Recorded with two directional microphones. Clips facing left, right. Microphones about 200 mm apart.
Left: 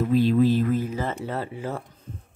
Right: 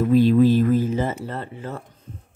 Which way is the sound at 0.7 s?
25° right (ahead or behind).